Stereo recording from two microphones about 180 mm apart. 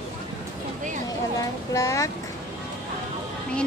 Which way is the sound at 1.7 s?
15° left (ahead or behind).